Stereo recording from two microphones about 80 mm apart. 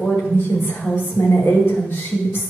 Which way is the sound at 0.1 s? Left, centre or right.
Left.